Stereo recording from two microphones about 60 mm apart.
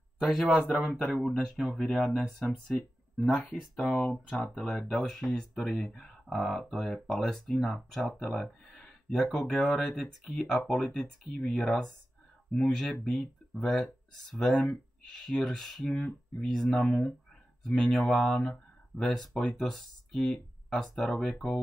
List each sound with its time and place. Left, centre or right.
0.2 s speech: centre
4.7 s speech: centre
5.6 s speech: centre
21.1 s speech: centre